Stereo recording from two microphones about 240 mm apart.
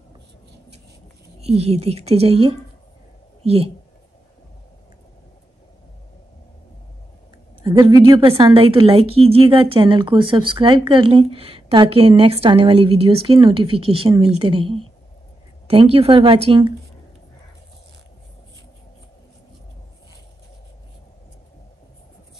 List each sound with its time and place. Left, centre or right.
1.4 s a woman's voice: right
7.6 s a woman's voice: centre